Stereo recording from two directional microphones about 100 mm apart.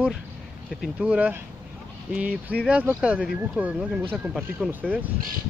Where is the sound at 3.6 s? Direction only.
10° right (ahead or behind).